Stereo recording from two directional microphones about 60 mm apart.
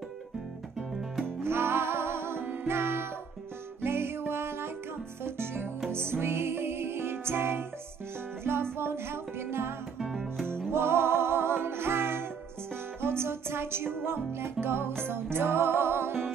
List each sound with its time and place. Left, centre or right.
1.4 s music: right
8.7 s music: right
9.9 s music: centre
10.7 s music: right